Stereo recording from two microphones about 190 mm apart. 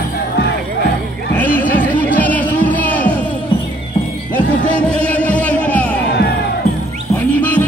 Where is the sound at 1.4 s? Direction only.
10° left (ahead or behind).